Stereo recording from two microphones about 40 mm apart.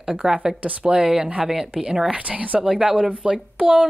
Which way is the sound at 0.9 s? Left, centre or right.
Centre.